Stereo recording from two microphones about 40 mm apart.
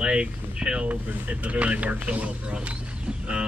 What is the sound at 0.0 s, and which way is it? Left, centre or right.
Speech, right.